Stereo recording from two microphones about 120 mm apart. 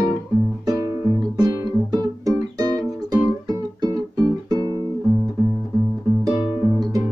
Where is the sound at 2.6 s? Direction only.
30° right (ahead or behind).